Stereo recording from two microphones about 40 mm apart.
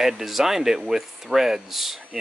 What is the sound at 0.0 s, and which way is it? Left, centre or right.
Speech, centre.